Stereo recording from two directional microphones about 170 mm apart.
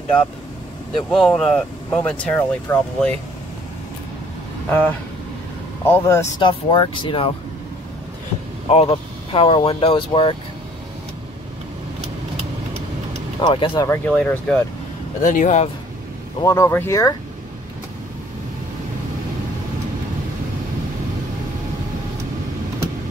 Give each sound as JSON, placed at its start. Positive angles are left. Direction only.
{"t": 0.9, "sound": "speech", "side_deg": 5}
{"t": 4.6, "sound": "speech", "side_deg": 10}
{"t": 6.4, "sound": "speech", "side_deg": 30}
{"t": 8.7, "sound": "speech", "side_deg": 35}
{"t": 13.4, "sound": "speech", "side_deg": 25}
{"t": 13.8, "sound": "speech", "side_deg": 10}
{"t": 15.2, "sound": "speech", "side_deg": 45}
{"t": 16.4, "sound": "speech", "side_deg": 15}